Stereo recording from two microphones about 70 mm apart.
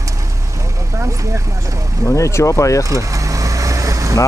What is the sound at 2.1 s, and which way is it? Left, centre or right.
Speech, left.